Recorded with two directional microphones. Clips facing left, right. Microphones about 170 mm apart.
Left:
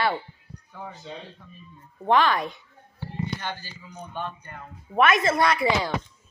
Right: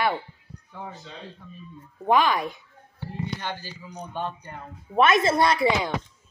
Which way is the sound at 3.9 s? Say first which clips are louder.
Right 2 dB; 35° right (ahead or behind).